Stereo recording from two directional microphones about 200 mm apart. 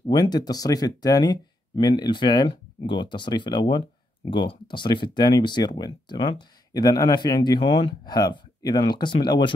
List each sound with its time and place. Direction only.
0.0 s speech: 20° left (ahead or behind)